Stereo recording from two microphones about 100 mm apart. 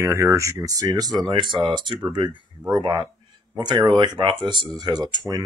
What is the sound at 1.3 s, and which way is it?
Speech, 55° right (ahead or behind).